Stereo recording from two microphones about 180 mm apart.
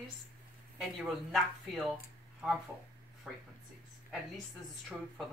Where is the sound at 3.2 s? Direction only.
Centre (ahead or behind).